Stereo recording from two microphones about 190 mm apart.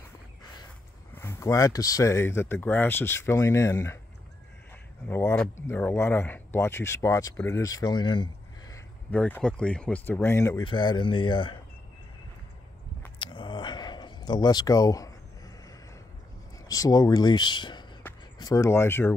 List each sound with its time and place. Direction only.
1.1 s speech: 15° left (ahead or behind)
5.0 s speech: 10° left (ahead or behind)
9.1 s speech: 5° left (ahead or behind)
10.6 s speech: 25° left (ahead or behind)
13.2 s a sound: 25° left (ahead or behind)
16.6 s speech: 20° left (ahead or behind)